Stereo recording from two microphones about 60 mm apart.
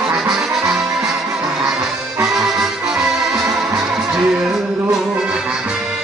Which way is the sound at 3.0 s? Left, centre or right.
Centre.